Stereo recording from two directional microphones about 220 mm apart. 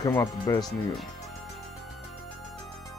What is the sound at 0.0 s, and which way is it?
Speech, 15° left (ahead or behind).